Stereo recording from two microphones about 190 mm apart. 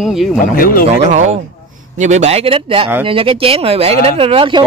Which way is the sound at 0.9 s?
35° right (ahead or behind).